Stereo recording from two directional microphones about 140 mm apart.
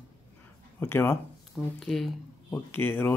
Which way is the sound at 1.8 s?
Centre (ahead or behind).